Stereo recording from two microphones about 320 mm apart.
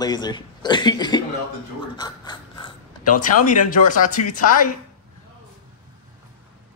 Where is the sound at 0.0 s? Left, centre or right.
Centre.